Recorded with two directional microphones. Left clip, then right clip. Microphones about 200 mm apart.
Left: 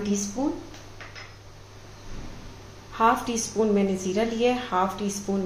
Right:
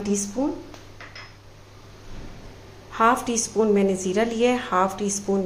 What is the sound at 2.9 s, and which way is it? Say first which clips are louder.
A woman's voice: right 2 dB; 25° right (ahead or behind).